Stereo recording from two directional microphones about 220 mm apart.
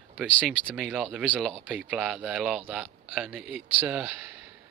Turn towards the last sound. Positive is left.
turn(degrees=-5)  # may be behind; listen again after turning